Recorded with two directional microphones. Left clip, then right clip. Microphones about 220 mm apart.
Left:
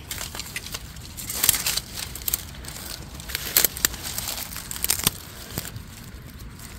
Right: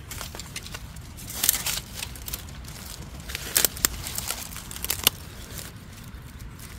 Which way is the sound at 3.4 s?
20° left (ahead or behind).